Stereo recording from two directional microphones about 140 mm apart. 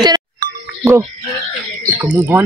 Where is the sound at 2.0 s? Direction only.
20° right (ahead or behind).